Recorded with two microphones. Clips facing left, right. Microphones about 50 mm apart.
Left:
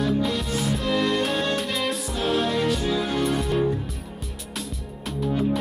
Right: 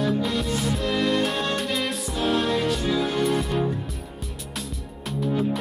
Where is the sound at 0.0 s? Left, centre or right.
Centre.